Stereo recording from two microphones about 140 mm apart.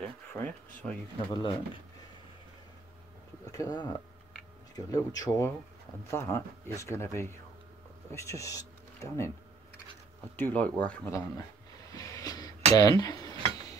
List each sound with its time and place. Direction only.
0.0 s a sound: 10° left (ahead or behind)
0.8 s speech: 20° left (ahead or behind)
1.3 s speech: 35° left (ahead or behind)
3.5 s speech: 30° left (ahead or behind)
10.3 s speech: 15° left (ahead or behind)
11.1 s speech: 25° left (ahead or behind)
11.9 s a sound: 25° left (ahead or behind)
12.7 s speech: 30° left (ahead or behind)